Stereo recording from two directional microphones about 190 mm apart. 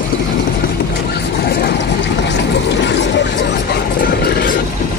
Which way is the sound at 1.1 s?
60° left (ahead or behind).